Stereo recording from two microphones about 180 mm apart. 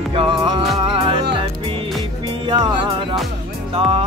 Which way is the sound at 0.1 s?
30° right (ahead or behind).